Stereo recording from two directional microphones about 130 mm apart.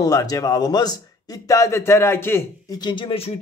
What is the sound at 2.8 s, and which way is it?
Speech, 35° left (ahead or behind).